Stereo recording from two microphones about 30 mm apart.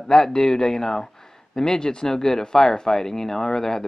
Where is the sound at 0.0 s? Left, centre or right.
Left.